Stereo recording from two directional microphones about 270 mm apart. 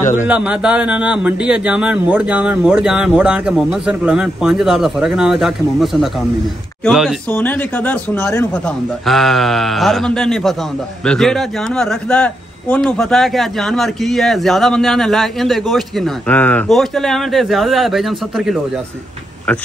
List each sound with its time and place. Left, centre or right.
0.0 s speech: left
0.3 s speech: centre